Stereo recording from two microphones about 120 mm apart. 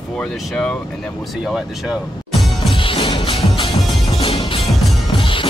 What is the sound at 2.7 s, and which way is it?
Music, 45° left (ahead or behind).